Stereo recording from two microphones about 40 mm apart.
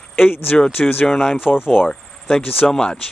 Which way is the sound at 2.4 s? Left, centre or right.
Left.